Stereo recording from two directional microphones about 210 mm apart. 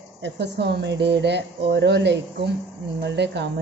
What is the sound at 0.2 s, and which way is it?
A woman's voice, 55° right (ahead or behind).